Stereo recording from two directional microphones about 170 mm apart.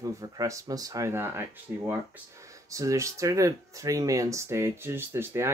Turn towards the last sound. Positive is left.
turn(degrees=-15)  # may be behind; listen again after turning